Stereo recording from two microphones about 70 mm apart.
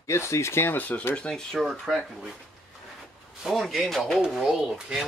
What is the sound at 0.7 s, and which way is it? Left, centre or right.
Speech, left.